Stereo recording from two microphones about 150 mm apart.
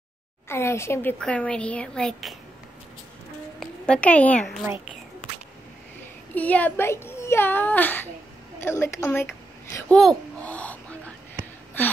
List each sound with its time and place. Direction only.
0.5 s a child's voice: 15° left (ahead or behind)
1.2 s a child's voice: 5° left (ahead or behind)
3.5 s a woman's voice: 5° left (ahead or behind)
6.3 s a child's voice: 10° left (ahead or behind)
9.9 s a child's voice: 5° left (ahead or behind)